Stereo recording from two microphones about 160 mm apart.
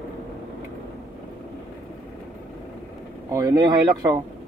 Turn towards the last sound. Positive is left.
turn(degrees=-25)  # may be behind; listen again after turning